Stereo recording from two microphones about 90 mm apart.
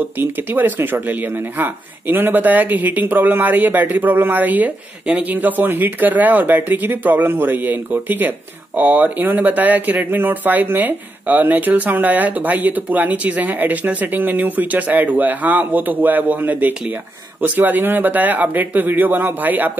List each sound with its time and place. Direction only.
0.2 s speech: 20° right (ahead or behind)